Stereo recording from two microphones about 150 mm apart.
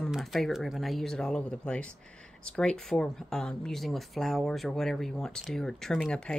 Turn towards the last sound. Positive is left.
turn(degrees=5)  # may be behind; listen again after turning